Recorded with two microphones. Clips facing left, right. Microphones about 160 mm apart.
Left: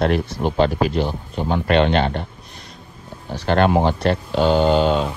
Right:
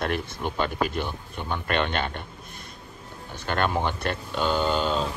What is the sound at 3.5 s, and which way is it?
Speech, 45° left (ahead or behind).